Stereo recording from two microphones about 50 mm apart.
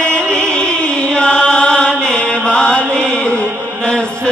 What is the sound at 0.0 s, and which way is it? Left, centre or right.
Music, centre.